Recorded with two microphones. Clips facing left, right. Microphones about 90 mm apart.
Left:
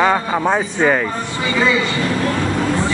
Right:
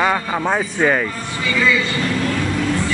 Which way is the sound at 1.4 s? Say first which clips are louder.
Left 1 dB; 30° left (ahead or behind).